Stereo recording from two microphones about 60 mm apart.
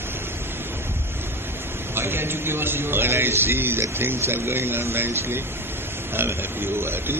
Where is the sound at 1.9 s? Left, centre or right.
Right.